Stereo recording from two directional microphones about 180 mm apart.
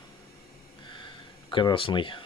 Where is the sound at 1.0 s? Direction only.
25° left (ahead or behind).